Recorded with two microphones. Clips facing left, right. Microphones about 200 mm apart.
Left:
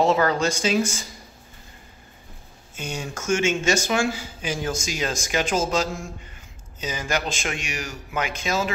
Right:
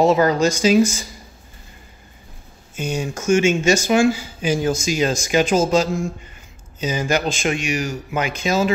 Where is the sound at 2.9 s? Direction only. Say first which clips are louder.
Right 7 dB; 15° right (ahead or behind).